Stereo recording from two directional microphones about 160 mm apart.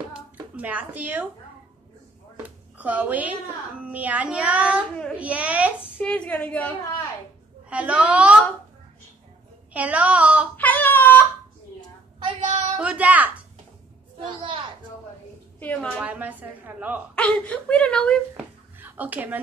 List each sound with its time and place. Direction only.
0.1 s hands: 10° right (ahead or behind)
2.3 s a woman's voice: 10° right (ahead or behind)
3.8 s child singing: 10° right (ahead or behind)
5.1 s a child's voice: 10° right (ahead or behind)
5.9 s speech: 10° left (ahead or behind)
7.7 s child singing: 10° right (ahead or behind)
9.7 s speech: 10° right (ahead or behind)
10.6 s a sound: 10° left (ahead or behind)
12.7 s a sound: 5° right (ahead or behind)
14.2 s a child's voice: 30° right (ahead or behind)
15.6 s speech: 10° left (ahead or behind)
16.0 s child singing: 10° right (ahead or behind)
17.1 s speech: 5° left (ahead or behind)
18.8 s a woman's voice: 10° right (ahead or behind)